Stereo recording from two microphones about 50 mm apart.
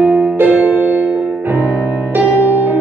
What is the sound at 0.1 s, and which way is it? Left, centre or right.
Music, right.